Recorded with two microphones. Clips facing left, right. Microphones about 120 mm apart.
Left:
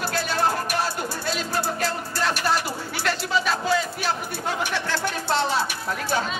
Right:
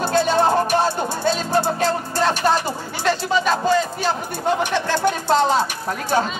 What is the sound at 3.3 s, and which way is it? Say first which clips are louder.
Speech: right 4 dB; 5° left (ahead or behind).